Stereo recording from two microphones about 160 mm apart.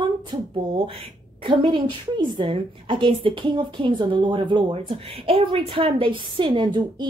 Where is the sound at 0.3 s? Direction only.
35° right (ahead or behind).